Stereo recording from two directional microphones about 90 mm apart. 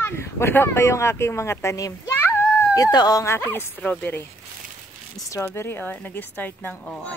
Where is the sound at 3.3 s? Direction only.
25° left (ahead or behind).